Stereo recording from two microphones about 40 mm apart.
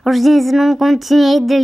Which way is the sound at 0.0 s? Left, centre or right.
Centre.